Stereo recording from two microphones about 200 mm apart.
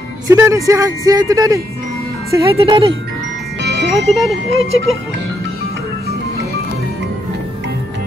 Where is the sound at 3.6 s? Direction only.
60° right (ahead or behind).